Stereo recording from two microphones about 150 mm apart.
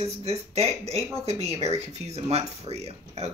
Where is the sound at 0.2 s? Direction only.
45° right (ahead or behind).